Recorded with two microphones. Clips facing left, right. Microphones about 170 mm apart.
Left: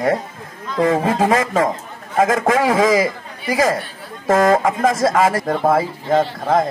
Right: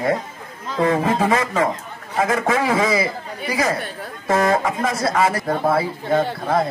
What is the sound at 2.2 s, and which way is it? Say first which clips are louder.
Speech: left 1 dB; 90° left.